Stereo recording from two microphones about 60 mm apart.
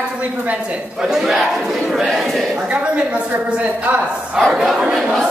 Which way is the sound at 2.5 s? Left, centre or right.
Centre.